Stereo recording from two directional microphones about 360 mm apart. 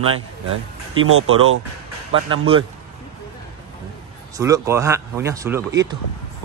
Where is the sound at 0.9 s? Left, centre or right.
Right.